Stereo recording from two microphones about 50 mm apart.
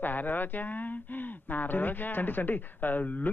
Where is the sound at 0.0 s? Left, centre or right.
Left.